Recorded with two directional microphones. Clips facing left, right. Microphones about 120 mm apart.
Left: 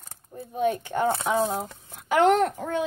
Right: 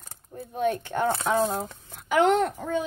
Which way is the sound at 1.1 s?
20° left (ahead or behind).